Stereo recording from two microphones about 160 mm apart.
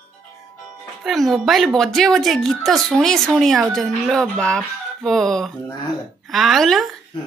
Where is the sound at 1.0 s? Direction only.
Centre (ahead or behind).